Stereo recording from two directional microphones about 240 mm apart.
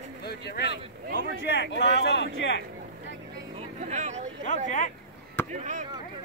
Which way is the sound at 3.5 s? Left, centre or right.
Right.